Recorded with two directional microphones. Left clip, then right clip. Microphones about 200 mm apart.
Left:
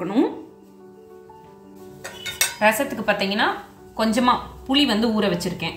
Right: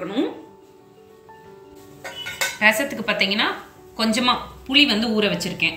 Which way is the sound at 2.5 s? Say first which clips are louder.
Right 2 dB; 30° left (ahead or behind).